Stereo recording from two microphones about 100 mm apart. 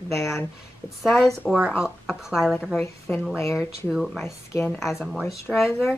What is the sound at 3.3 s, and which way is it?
Speech, 25° left (ahead or behind).